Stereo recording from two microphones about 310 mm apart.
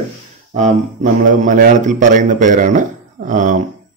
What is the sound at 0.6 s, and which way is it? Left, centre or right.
A man's voice, right.